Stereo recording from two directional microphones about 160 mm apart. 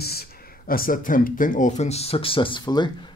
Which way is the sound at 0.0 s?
75° left (ahead or behind).